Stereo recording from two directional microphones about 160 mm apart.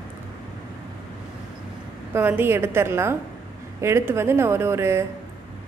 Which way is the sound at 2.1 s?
10° right (ahead or behind).